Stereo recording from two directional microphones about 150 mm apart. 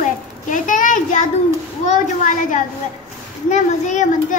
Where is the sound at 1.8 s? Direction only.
55° left (ahead or behind).